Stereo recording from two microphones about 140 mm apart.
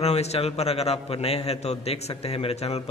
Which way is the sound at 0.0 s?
50° left (ahead or behind).